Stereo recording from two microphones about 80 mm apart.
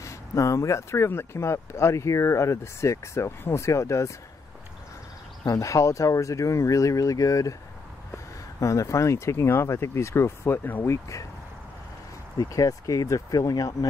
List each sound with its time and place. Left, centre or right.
0.0 s speech: left
5.5 s speech: left
12.4 s speech: left